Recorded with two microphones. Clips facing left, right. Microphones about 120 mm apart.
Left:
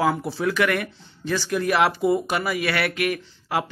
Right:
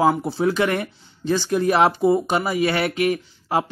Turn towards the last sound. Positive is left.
turn(degrees=-25)  # may be behind; listen again after turning